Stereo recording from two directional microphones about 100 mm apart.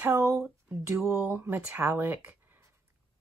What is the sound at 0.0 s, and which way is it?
Speech, 30° right (ahead or behind).